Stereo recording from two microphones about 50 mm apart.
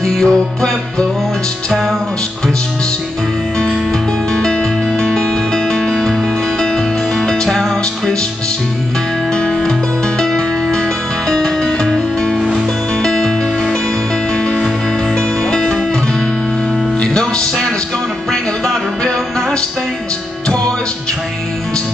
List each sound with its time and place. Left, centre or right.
0.0 s music: centre
1.7 s music: centre
4.3 s music: centre
9.3 s music: left
12.4 s music: centre
12.9 s music: centre
14.3 s music: centre
17.0 s music: centre